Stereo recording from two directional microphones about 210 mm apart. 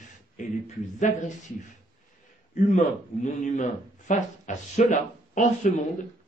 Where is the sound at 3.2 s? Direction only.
35° left (ahead or behind).